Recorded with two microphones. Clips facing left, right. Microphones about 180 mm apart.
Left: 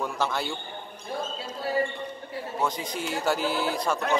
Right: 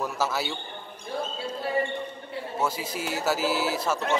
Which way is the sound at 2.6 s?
5° right (ahead or behind).